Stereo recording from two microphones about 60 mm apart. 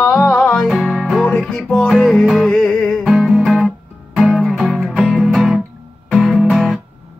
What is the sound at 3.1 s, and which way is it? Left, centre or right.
Music, centre.